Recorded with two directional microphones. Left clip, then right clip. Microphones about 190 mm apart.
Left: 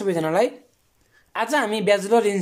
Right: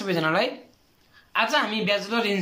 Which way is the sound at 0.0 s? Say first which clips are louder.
Left 3 dB; 35° left (ahead or behind).